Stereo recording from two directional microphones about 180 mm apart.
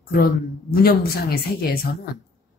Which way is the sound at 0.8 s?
55° left (ahead or behind).